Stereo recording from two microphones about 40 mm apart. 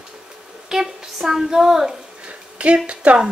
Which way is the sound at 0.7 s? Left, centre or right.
Centre.